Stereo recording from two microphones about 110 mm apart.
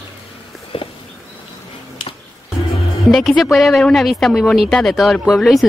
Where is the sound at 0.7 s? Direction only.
55° left (ahead or behind).